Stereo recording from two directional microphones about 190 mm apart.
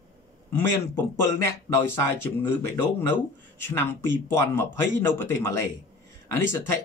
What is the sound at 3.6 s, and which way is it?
Speech, 10° left (ahead or behind).